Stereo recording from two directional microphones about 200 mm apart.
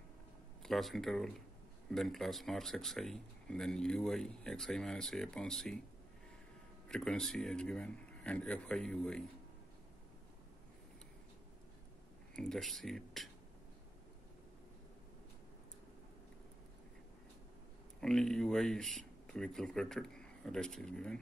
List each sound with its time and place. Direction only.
0.6 s speech: centre (ahead or behind)
6.9 s speech: 5° left (ahead or behind)
12.4 s speech: centre (ahead or behind)
18.0 s speech: centre (ahead or behind)